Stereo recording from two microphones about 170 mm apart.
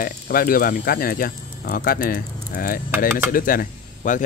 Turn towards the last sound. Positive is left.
turn(degrees=50)  # may be behind; listen again after turning